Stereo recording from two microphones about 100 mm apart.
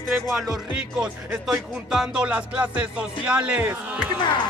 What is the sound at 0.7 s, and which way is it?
Speech, 10° right (ahead or behind).